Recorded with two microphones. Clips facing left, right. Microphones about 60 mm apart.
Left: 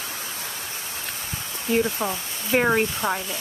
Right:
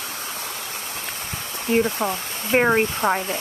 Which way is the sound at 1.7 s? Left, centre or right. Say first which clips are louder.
Right 2 dB; right.